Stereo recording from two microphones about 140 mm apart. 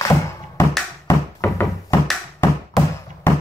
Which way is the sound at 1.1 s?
20° left (ahead or behind).